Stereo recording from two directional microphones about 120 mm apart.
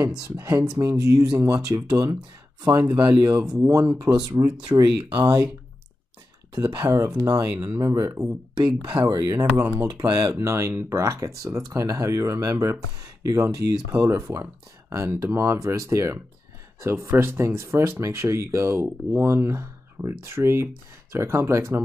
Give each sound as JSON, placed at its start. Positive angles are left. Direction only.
{"t": 0.7, "sound": "speech", "side_deg": -25}
{"t": 3.3, "sound": "speech", "side_deg": -10}
{"t": 3.9, "sound": "speech", "side_deg": -30}
{"t": 6.5, "sound": "speech", "side_deg": -30}
{"t": 9.6, "sound": "speech", "side_deg": -20}
{"t": 9.8, "sound": "speech", "side_deg": -30}